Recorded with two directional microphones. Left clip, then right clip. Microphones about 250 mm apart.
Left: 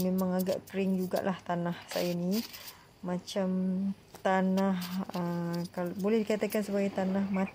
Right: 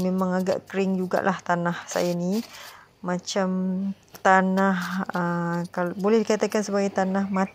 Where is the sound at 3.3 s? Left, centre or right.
Centre.